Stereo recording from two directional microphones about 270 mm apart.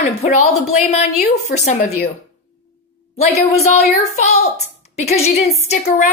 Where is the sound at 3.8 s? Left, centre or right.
Left.